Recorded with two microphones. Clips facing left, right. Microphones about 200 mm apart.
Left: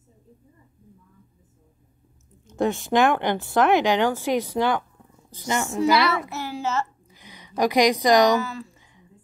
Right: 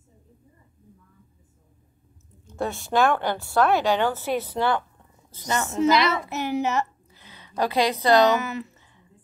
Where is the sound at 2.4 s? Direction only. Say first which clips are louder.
Left 5 dB; 15° left (ahead or behind).